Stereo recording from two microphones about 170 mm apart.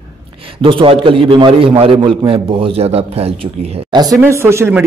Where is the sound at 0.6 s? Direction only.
30° right (ahead or behind).